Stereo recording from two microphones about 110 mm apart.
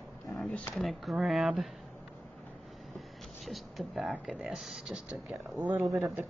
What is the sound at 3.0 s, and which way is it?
Speech, centre (ahead or behind).